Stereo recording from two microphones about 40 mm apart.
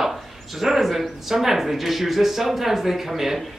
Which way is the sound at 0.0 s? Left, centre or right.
Centre.